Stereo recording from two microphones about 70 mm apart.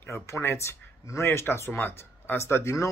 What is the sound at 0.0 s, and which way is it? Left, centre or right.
Speech, left.